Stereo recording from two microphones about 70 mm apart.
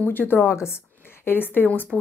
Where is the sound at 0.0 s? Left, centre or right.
Left.